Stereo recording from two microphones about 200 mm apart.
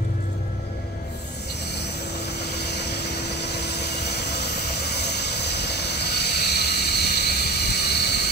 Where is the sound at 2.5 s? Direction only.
55° left (ahead or behind).